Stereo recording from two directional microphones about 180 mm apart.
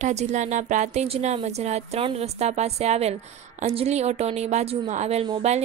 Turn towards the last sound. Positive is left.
turn(degrees=-35)  # may be behind; listen again after turning